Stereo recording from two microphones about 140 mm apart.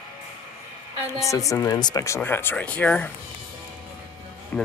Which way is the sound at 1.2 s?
20° left (ahead or behind).